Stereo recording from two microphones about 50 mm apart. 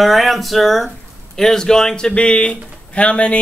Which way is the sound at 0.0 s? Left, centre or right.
Centre.